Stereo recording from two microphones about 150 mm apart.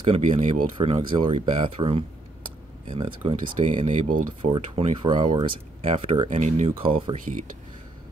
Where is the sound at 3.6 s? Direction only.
55° right (ahead or behind).